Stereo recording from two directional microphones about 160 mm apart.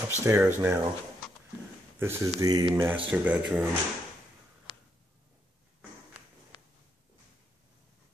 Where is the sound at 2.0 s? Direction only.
15° right (ahead or behind).